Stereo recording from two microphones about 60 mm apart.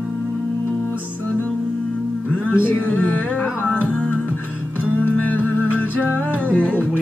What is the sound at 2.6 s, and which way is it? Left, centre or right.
Music, left.